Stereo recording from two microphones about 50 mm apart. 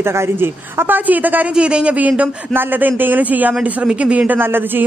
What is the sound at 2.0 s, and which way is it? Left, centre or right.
Speech, right.